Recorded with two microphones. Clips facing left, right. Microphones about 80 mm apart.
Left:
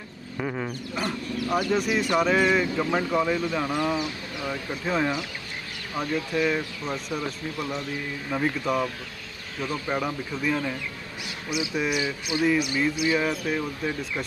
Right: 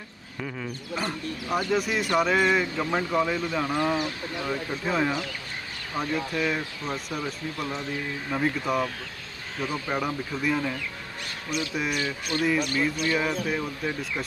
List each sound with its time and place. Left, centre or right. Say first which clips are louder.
0.4 s a sound: left 5 dB; left
0.9 s speech: left 1 dB; centre
11.7 s speech: left 4 dB; centre
12.0 s speech: left 2 dB; centre